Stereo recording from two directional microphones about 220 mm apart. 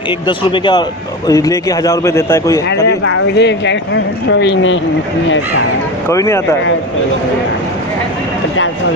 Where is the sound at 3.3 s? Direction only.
55° left (ahead or behind).